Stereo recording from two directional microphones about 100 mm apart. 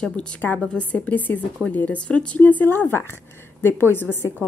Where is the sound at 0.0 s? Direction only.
10° left (ahead or behind).